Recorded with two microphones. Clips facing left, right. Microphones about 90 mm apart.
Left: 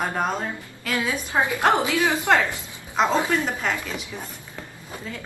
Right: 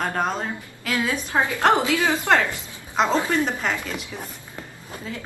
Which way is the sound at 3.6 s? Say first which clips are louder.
Even; 10° right (ahead or behind).